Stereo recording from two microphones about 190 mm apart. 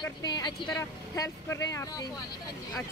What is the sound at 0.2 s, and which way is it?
Speech, 20° left (ahead or behind).